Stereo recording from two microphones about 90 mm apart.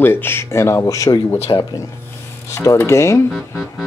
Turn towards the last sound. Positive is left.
turn(degrees=0)  # may be behind; listen again after turning